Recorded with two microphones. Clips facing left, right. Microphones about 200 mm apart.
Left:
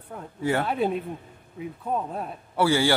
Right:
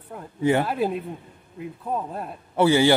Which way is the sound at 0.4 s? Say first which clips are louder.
Right 4 dB; 20° right (ahead or behind).